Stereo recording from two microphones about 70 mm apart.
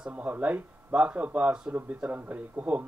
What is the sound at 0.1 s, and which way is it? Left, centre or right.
Speech, right.